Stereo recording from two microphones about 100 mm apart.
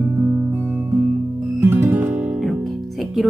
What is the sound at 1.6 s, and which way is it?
Music, 20° right (ahead or behind).